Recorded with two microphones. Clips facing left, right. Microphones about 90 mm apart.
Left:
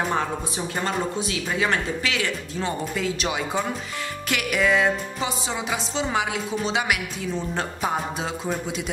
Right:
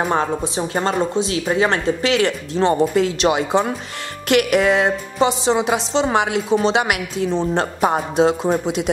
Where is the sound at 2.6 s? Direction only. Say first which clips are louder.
Right 12 dB; 65° right (ahead or behind).